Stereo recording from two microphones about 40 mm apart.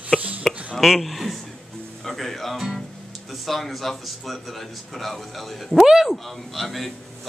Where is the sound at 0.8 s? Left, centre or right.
Centre.